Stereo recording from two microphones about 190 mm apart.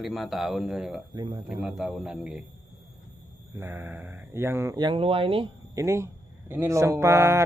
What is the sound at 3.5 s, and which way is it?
Speech, 10° right (ahead or behind).